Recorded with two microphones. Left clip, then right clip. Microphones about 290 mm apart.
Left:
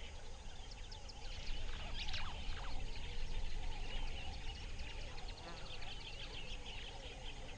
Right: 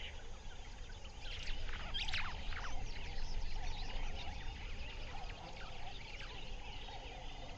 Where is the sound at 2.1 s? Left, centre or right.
Right.